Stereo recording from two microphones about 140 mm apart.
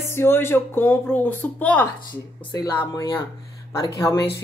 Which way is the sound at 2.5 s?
25° left (ahead or behind).